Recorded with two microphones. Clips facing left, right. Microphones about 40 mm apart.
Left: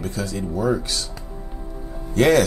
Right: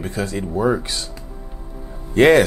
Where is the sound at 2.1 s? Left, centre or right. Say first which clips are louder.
Right 4 dB; right.